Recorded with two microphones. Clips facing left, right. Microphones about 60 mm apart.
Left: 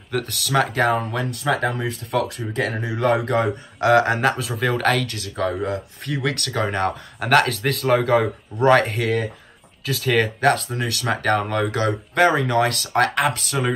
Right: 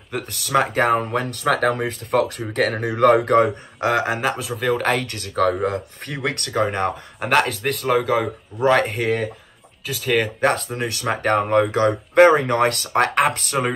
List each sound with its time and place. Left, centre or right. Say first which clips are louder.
0.3 s speech: right 3 dB; right
0.8 s speech: right 2 dB; right
1.5 s speech: right 3 dB; right
1.8 s speech: right 3 dB; right
2.5 s speech: right 4 dB; right
3.2 s speech: right 5 dB; right
3.4 s speech: left 2 dB; right
4.0 s speech: left 2 dB; centre
4.8 s speech: left 1 dB; right; by 7.7 s centre
7.8 s speech: left 2 dB; centre
8.8 s speech: right 1 dB; right
9.8 s speech: left 1 dB; centre
10.4 s speech: left 1 dB; right